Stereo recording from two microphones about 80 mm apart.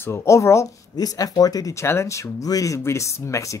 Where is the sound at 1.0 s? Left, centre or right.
Left.